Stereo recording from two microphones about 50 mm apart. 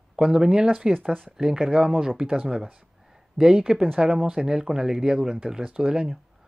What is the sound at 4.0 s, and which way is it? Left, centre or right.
Speech, centre.